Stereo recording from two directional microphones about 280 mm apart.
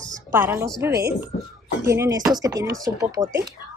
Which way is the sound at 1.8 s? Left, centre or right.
Centre.